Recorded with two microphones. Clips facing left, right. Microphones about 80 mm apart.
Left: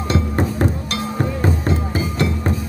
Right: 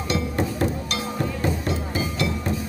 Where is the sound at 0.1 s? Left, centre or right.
Left.